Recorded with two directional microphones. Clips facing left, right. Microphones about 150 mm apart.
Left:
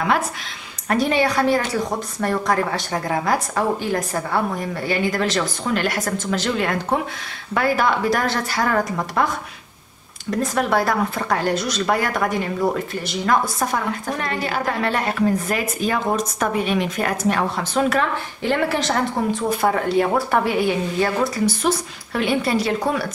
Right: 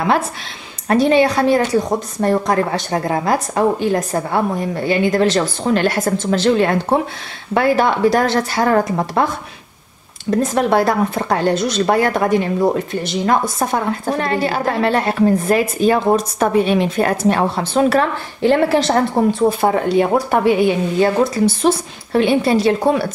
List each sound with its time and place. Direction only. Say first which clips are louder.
0.8 s speech: right 6 dB; 25° right (ahead or behind)
10.4 s speech: right 4 dB; 25° right (ahead or behind)
19.6 s speech: right 4 dB; 25° right (ahead or behind)